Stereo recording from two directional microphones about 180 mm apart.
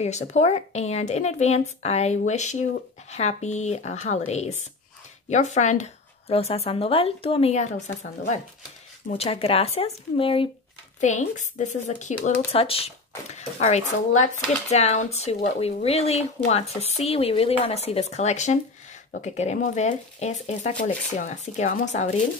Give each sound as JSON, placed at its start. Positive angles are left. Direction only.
{"t": 0.0, "sound": "speech", "side_deg": 40}
{"t": 11.0, "sound": "speech", "side_deg": 40}